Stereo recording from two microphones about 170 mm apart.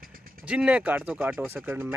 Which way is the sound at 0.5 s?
5° right (ahead or behind).